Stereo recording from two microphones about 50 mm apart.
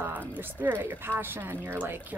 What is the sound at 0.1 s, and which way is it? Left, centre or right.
Speech, right.